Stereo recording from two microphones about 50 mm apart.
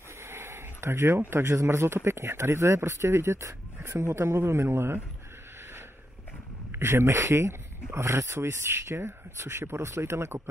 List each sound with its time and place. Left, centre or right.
0.2 s a sound: right
1.3 s speech: right
6.7 s speech: right